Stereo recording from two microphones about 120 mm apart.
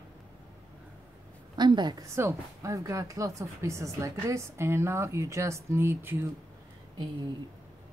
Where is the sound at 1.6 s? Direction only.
35° right (ahead or behind).